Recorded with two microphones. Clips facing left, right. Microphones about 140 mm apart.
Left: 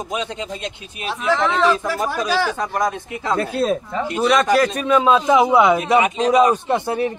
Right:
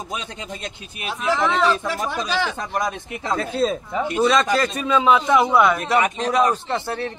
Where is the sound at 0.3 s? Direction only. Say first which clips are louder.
Left 5 dB; 30° left (ahead or behind).